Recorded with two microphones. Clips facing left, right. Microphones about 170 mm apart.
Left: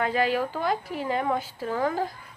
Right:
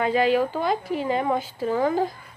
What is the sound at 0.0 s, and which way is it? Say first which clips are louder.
Speech: right 4 dB; 20° right (ahead or behind).